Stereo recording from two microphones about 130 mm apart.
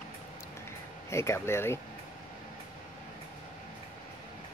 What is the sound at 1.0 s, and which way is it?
Speech, 20° left (ahead or behind).